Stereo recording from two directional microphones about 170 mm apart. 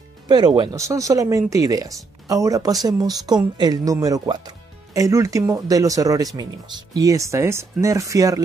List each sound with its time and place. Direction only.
0.3 s speech: 25° right (ahead or behind)